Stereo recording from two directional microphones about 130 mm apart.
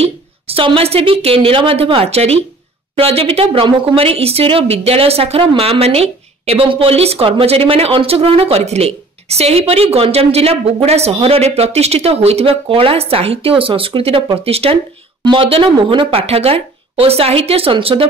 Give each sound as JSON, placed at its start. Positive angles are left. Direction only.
{"t": 0.5, "sound": "speech", "side_deg": -45}